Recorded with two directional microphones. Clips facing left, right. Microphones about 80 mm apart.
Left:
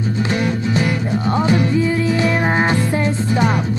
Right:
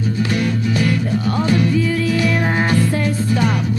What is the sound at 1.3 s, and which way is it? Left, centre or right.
Music, left.